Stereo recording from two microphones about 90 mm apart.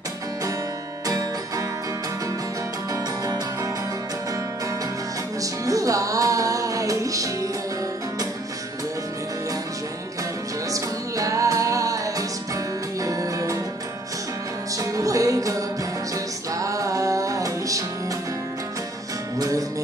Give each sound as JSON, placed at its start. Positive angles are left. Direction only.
{"t": 2.9, "sound": "music", "side_deg": -40}
{"t": 5.4, "sound": "music", "side_deg": -40}
{"t": 10.7, "sound": "music", "side_deg": -40}
{"t": 14.8, "sound": "music", "side_deg": -40}
{"t": 16.5, "sound": "music", "side_deg": -40}
{"t": 19.3, "sound": "music", "side_deg": -40}